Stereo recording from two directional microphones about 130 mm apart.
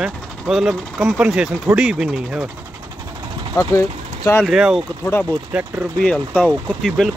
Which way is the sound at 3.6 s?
25° left (ahead or behind).